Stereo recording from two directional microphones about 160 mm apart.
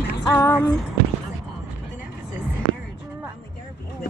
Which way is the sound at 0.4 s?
15° left (ahead or behind).